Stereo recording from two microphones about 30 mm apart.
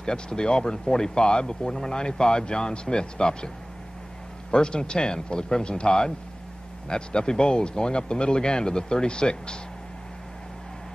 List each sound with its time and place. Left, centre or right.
0.0 s speech: left